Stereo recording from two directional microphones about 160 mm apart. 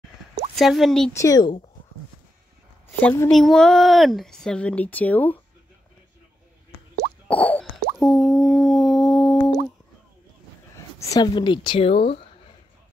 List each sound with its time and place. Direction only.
0.6 s speech: centre (ahead or behind)
1.1 s speech: 20° left (ahead or behind)
3.0 s speech: 10° left (ahead or behind)
7.2 s plop: 10° left (ahead or behind)
8.0 s a sound: centre (ahead or behind)
11.0 s speech: 20° left (ahead or behind)